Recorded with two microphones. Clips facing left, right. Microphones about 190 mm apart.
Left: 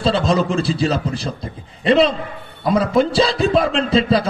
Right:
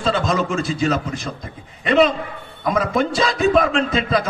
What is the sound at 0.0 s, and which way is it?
A man's voice, 35° left (ahead or behind).